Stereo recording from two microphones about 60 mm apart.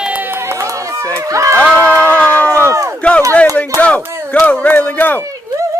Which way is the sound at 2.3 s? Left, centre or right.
Left.